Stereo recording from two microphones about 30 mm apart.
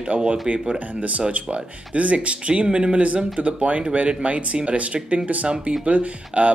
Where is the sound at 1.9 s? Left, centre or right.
Right.